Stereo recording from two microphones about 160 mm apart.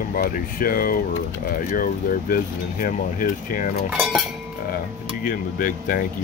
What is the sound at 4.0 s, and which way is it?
Cutlery, centre (ahead or behind).